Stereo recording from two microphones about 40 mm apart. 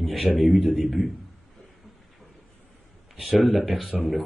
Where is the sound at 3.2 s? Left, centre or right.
Centre.